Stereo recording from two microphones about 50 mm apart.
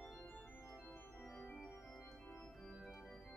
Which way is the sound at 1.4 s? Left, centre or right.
Left.